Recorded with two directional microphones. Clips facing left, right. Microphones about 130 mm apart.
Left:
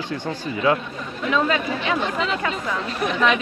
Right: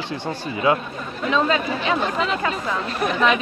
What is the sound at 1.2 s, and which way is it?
Speech, 30° right (ahead or behind).